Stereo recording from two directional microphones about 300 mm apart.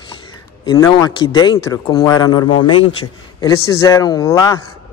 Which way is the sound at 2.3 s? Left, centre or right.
Left.